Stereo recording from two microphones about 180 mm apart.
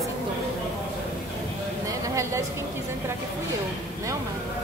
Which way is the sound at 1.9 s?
20° right (ahead or behind).